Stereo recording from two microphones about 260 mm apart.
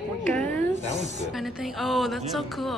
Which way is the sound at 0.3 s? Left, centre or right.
Centre.